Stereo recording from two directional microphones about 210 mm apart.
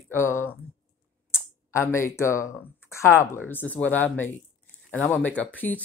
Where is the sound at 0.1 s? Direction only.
10° left (ahead or behind).